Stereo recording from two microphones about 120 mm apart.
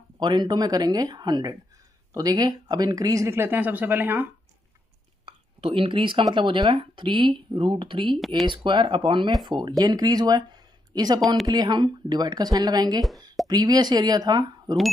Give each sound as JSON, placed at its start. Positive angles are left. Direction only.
{"t": 0.2, "sound": "speech", "side_deg": -40}
{"t": 5.2, "sound": "a sound", "side_deg": -50}
{"t": 6.3, "sound": "speech", "side_deg": -45}